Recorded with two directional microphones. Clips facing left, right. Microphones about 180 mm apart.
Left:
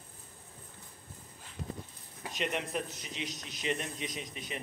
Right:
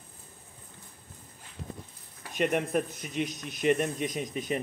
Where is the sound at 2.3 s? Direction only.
50° right (ahead or behind).